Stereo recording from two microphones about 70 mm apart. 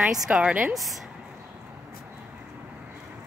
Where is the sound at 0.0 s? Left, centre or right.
Centre.